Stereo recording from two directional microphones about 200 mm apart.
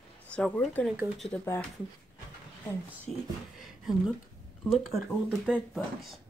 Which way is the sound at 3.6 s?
Centre (ahead or behind).